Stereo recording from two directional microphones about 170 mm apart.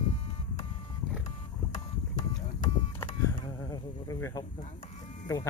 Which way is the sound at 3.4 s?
20° left (ahead or behind).